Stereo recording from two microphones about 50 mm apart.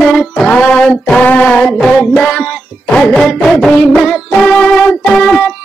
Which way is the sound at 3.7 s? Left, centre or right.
Centre.